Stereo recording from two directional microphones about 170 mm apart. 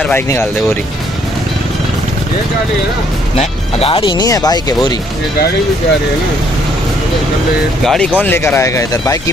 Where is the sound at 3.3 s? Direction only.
35° left (ahead or behind).